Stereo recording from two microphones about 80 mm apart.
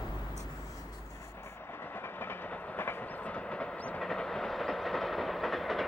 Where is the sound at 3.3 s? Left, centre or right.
Centre.